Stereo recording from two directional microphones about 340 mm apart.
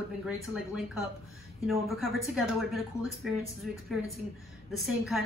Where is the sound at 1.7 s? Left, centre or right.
Centre.